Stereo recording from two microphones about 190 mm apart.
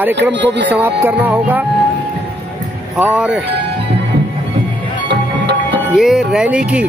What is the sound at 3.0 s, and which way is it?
Music, 5° right (ahead or behind).